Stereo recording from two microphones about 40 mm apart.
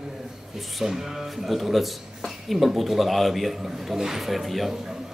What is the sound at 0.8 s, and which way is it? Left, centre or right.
Speech, centre.